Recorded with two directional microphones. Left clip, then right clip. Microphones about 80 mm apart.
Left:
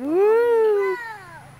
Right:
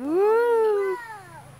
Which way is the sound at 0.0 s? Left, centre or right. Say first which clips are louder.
Left 3 dB; centre.